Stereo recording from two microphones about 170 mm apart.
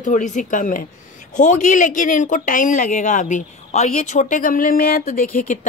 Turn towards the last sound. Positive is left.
turn(degrees=55)  # may be behind; listen again after turning